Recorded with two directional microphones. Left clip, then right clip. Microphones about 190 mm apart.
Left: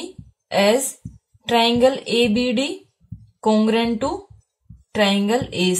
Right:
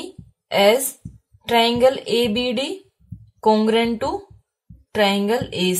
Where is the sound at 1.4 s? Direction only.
35° right (ahead or behind).